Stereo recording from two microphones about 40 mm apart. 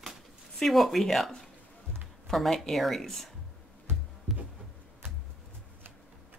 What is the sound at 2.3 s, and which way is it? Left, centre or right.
Speech, centre.